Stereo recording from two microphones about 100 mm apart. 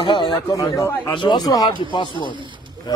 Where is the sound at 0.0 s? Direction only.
55° left (ahead or behind).